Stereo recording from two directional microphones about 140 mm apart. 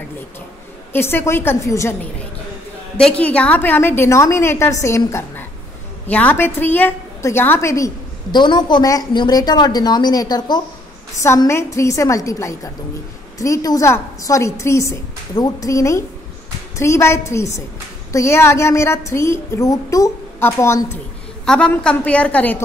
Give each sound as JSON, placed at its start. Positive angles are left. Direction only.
{"t": 0.9, "sound": "a woman's voice", "side_deg": 15}
{"t": 3.0, "sound": "a woman's voice", "side_deg": 10}
{"t": 21.5, "sound": "a woman's voice", "side_deg": 5}